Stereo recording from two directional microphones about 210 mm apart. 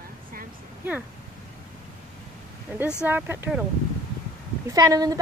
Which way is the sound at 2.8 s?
5° right (ahead or behind).